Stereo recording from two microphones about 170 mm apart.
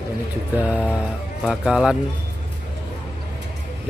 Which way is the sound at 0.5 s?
10° right (ahead or behind).